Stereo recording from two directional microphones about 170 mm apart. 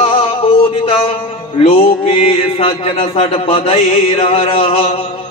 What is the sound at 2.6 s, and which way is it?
A man's voice, 35° left (ahead or behind).